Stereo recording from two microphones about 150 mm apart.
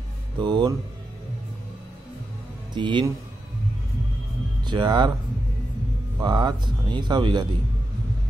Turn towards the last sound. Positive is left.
turn(degrees=-30)  # may be behind; listen again after turning